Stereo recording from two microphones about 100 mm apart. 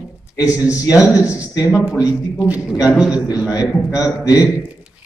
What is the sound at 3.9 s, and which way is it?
Speech, 35° left (ahead or behind).